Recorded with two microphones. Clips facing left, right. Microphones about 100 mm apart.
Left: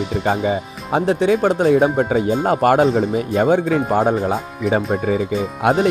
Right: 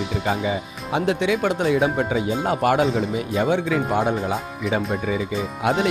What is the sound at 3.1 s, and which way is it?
Speech, 45° left (ahead or behind).